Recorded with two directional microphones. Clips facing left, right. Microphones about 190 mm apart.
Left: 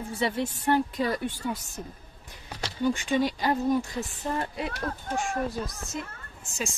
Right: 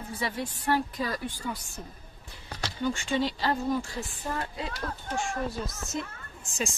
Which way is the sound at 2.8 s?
15° left (ahead or behind).